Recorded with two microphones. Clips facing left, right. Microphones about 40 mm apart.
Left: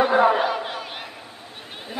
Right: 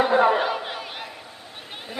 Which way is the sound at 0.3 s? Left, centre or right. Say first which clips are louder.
Left 1 dB; centre.